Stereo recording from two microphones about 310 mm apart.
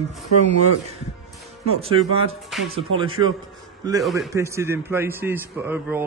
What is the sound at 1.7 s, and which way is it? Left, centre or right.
Speech, centre.